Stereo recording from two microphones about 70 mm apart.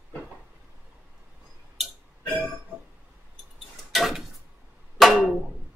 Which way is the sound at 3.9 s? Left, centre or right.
Centre.